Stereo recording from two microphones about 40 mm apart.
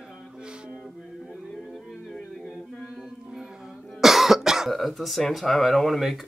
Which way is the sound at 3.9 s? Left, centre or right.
Centre.